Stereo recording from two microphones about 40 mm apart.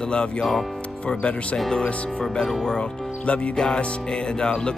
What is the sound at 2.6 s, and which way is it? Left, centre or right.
Speech, left.